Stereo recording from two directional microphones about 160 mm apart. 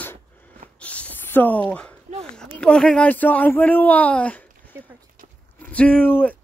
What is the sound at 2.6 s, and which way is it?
Speech, 5° left (ahead or behind).